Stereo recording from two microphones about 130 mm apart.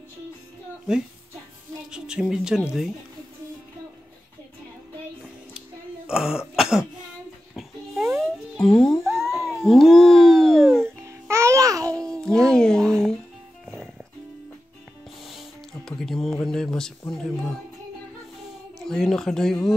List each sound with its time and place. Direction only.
0.9 s speech: 5° right (ahead or behind)
6.0 s throat clearing: 5° right (ahead or behind)
7.5 s dog: centre (ahead or behind)
8.2 s music: centre (ahead or behind)
9.3 s a sound: centre (ahead or behind)
11.1 s babbling: 20° right (ahead or behind)
12.1 s music: 5° left (ahead or behind)
15.2 s music: centre (ahead or behind)
18.8 s a sound: 5° left (ahead or behind)